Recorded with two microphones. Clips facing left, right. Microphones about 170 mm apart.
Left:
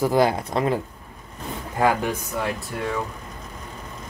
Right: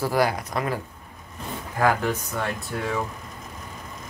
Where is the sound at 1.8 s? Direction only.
20° left (ahead or behind).